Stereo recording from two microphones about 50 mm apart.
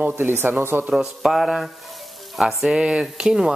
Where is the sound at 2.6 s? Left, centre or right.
Centre.